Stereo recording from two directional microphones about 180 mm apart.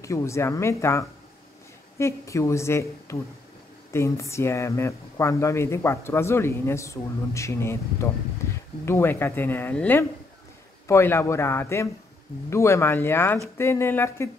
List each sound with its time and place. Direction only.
0.0 s speech: 15° left (ahead or behind)